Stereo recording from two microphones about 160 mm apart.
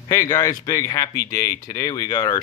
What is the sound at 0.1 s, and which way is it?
Speech, 20° left (ahead or behind).